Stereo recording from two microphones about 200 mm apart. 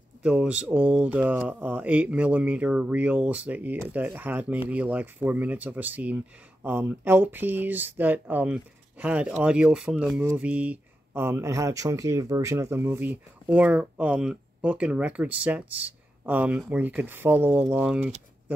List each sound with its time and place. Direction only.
0.2 s speech: 5° right (ahead or behind)